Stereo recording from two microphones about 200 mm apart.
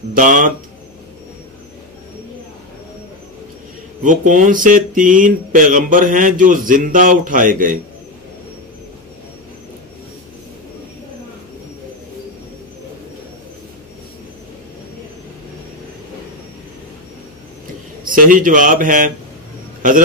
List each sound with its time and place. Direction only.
0.1 s speech: 40° right (ahead or behind)
4.0 s speech: 40° right (ahead or behind)
18.1 s speech: 45° right (ahead or behind)